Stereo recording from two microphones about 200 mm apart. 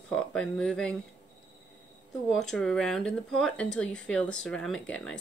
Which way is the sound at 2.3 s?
Centre (ahead or behind).